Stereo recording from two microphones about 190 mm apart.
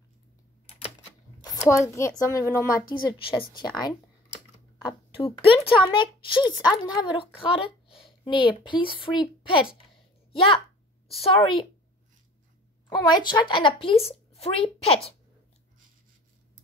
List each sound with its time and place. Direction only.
1.4 s a child's voice: 20° left (ahead or behind)
13.1 s a woman's voice: 25° left (ahead or behind)